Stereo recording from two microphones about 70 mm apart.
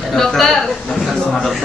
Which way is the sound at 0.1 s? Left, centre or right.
Centre.